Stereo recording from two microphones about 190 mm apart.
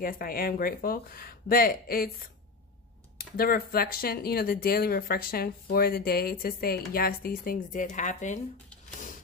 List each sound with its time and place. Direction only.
0.0 s speech: 50° left (ahead or behind)